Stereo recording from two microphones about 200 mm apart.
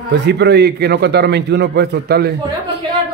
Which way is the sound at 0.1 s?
60° right (ahead or behind).